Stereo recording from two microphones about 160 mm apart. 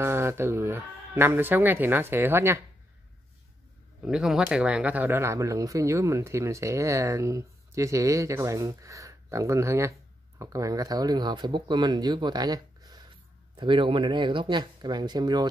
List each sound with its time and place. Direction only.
0.0 s speech: 15° right (ahead or behind)
4.0 s speech: 5° right (ahead or behind); by 15.4 s 25° right (ahead or behind)